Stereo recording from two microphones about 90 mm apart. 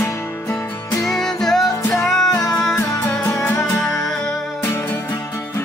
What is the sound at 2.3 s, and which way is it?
Music, 40° left (ahead or behind).